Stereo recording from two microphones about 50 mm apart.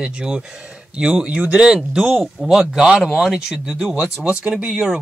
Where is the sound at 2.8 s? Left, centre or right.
Centre.